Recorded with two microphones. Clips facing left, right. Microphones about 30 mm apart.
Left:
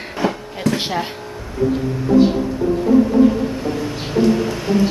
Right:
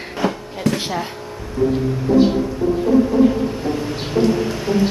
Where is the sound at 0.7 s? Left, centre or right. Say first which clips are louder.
Left 2 dB; left.